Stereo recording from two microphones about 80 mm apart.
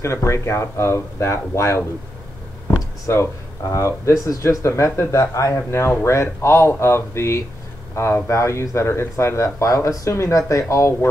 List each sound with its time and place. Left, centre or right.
0.0 s speech: left
3.1 s speech: left